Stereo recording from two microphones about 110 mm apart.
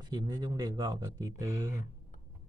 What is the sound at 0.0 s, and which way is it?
Speech, 40° right (ahead or behind).